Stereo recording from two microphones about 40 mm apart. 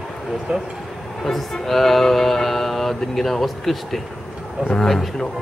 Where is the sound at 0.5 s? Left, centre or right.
Centre.